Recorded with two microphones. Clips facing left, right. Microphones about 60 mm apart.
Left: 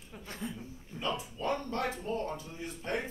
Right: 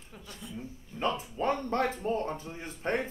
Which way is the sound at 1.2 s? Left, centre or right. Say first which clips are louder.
Right 4 dB; right.